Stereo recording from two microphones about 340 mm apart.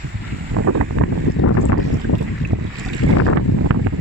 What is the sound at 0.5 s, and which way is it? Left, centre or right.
Wind noise, right.